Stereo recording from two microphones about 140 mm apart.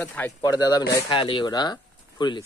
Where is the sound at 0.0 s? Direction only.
15° left (ahead or behind).